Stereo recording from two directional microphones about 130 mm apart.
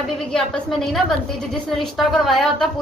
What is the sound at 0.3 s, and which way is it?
A woman's voice, 5° left (ahead or behind).